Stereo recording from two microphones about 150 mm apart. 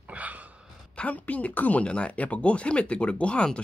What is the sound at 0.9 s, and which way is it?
Speech, 10° left (ahead or behind).